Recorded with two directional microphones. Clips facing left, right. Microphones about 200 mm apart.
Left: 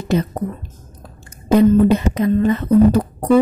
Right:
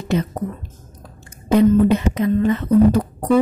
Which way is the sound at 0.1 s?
35° left (ahead or behind).